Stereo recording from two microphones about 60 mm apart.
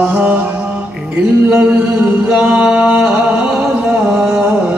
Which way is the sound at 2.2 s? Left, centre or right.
Centre.